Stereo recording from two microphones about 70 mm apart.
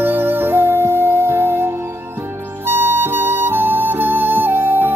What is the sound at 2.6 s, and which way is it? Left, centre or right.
Music, right.